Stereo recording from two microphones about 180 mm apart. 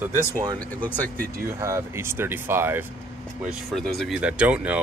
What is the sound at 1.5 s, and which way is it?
Speech, 15° right (ahead or behind).